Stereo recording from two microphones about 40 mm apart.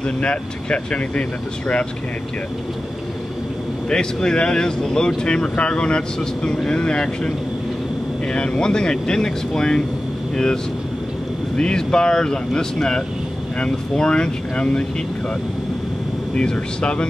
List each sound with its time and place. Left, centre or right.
0.0 s speech: left
3.9 s speech: centre
16.3 s speech: left